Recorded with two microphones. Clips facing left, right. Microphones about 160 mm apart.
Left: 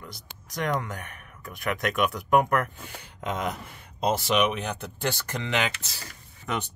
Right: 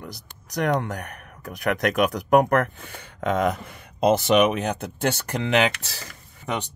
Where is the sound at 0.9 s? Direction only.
40° right (ahead or behind).